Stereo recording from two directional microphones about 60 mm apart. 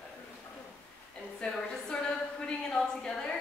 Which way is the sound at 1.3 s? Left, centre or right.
Centre.